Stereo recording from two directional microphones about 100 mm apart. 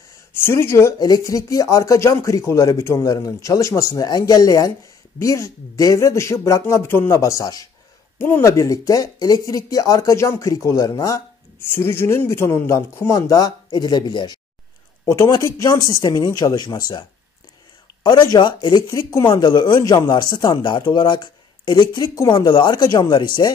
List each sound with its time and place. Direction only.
0.3 s speech: 25° left (ahead or behind)
0.9 s speech: 35° left (ahead or behind)
11.7 s speech: 25° left (ahead or behind); by 14.4 s 45° left (ahead or behind)
15.2 s speech: 35° left (ahead or behind)
18.0 s speech: 45° left (ahead or behind)
19.2 s speech: 50° left (ahead or behind)
22.3 s speech: 55° left (ahead or behind)